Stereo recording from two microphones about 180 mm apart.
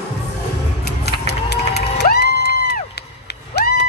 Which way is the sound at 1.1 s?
65° left (ahead or behind).